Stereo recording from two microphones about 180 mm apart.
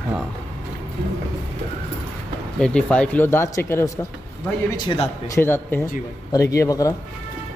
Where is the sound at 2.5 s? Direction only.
5° left (ahead or behind).